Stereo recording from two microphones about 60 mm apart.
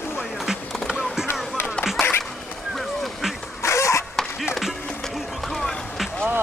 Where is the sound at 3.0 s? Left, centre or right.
Centre.